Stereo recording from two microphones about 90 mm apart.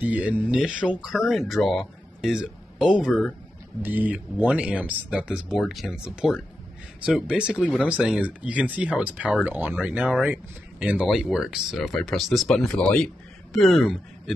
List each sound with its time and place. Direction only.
0.0 s speech: 15° right (ahead or behind)
3.8 s speech: 20° right (ahead or behind)
11.1 s speech: 5° right (ahead or behind)